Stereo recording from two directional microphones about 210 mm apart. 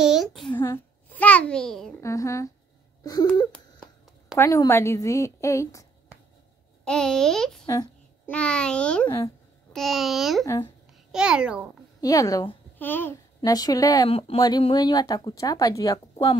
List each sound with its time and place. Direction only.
0.0 s a sound: centre (ahead or behind)
2.0 s a woman's voice: 15° left (ahead or behind)
3.5 s a sound: 5° left (ahead or behind)
4.5 s a woman's voice: 15° left (ahead or behind)
6.8 s a child's voice: 5° left (ahead or behind)
7.6 s a woman's voice: 15° left (ahead or behind)
8.3 s a child's voice: 5° left (ahead or behind)
10.4 s a woman's voice: 15° left (ahead or behind)
10.9 s a child's voice: 5° right (ahead or behind)
12.0 s a child's voice: 15° left (ahead or behind)